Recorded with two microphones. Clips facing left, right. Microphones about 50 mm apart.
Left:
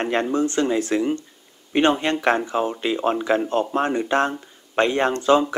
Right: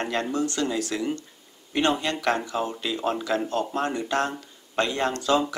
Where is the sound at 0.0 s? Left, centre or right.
Left.